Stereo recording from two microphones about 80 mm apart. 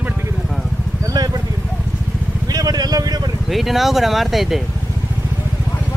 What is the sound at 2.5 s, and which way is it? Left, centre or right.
Speech, right.